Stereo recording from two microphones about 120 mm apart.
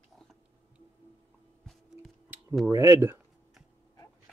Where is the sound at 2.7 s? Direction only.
25° right (ahead or behind).